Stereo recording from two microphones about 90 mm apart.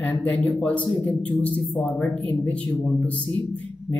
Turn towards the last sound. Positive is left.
turn(degrees=15)  # may be behind; listen again after turning